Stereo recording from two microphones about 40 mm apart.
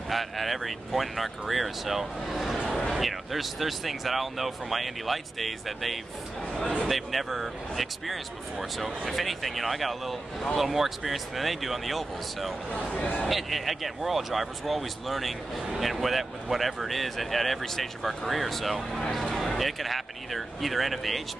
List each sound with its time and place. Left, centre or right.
0.1 s speech: centre
12.9 s a man's voice: left
13.3 s speech: centre